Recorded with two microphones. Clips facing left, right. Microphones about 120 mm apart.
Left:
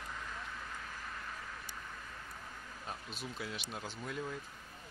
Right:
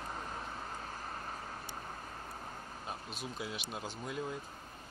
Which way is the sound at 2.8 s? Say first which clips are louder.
Right 1 dB; 35° right (ahead or behind).